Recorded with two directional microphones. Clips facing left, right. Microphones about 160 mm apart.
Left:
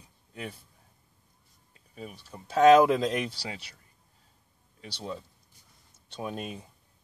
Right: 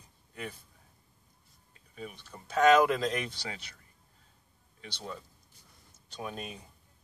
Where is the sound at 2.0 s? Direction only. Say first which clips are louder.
Left 1 dB; 35° left (ahead or behind).